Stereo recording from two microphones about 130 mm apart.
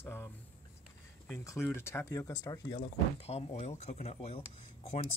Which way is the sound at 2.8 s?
50° left (ahead or behind).